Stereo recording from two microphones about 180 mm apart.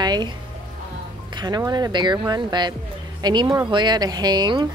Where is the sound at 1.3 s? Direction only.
25° right (ahead or behind).